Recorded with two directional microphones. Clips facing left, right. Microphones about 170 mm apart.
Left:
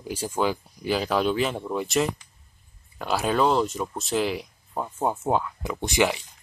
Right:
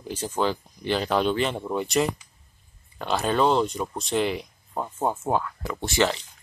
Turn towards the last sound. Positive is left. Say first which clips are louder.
# even
turn(degrees=15)  # may be behind; listen again after turning